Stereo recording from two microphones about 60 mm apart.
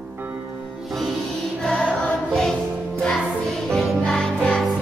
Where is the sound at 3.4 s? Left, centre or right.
Centre.